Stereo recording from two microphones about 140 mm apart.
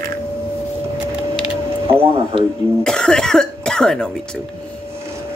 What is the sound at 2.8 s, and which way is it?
Speech, 5° left (ahead or behind).